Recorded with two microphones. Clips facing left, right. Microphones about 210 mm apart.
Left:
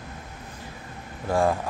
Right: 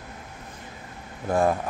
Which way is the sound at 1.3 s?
20° right (ahead or behind).